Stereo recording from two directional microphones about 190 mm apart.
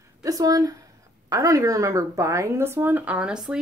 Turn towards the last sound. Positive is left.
turn(degrees=-5)  # may be behind; listen again after turning